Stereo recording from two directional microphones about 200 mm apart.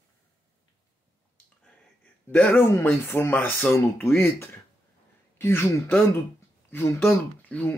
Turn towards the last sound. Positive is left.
turn(degrees=5)  # may be behind; listen again after turning